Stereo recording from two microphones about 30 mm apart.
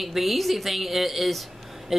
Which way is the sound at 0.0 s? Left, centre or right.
Centre.